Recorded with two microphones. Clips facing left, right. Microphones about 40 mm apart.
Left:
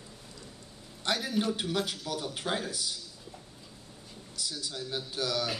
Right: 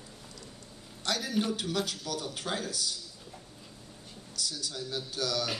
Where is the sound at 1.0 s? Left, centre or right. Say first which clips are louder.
Left 1 dB; centre.